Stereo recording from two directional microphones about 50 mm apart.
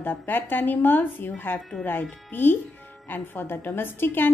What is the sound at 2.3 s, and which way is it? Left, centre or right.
A woman's voice, left.